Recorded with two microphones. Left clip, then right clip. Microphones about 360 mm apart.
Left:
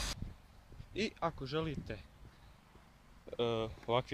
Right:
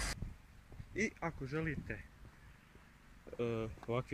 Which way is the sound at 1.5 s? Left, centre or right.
Left.